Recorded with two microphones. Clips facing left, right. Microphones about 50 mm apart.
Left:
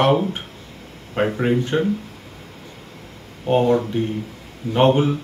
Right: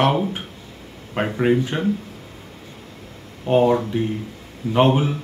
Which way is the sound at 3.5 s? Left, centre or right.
Centre.